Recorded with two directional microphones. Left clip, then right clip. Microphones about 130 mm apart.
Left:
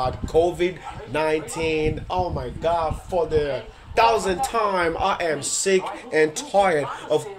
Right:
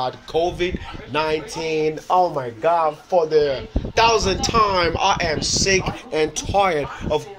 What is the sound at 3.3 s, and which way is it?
Speech, 15° left (ahead or behind).